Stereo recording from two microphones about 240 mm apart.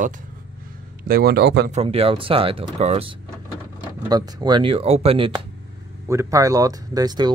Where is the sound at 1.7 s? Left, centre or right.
Right.